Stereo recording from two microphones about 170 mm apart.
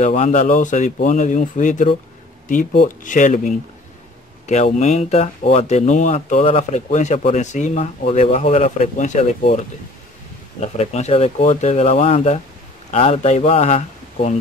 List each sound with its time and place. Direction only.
0.0 s speech: 45° left (ahead or behind)
10.6 s speech: 40° left (ahead or behind)